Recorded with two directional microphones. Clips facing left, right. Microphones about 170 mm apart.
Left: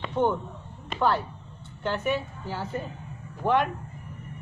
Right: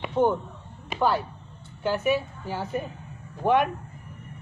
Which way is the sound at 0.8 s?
5° right (ahead or behind).